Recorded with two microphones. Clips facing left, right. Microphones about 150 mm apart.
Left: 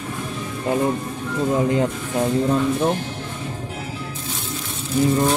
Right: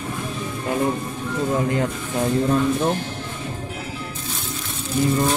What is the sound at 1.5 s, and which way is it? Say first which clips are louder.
Speech: left 3 dB; 20° left (ahead or behind).